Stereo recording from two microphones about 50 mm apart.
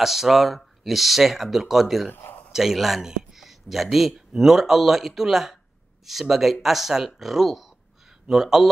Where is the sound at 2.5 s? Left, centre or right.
Centre.